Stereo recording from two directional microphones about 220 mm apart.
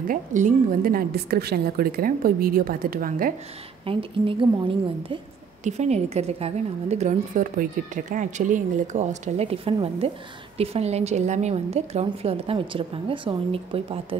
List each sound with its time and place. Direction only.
0.1 s a woman's voice: 35° right (ahead or behind)
3.8 s a woman's voice: 25° right (ahead or behind)